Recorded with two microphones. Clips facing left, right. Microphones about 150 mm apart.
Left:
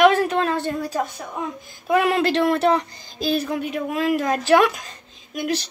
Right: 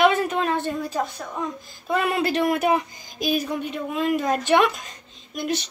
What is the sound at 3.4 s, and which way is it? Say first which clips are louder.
A woman's voice: left 3 dB; 5° left (ahead or behind).